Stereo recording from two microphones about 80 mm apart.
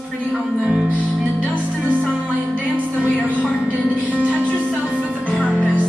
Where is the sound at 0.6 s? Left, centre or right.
Centre.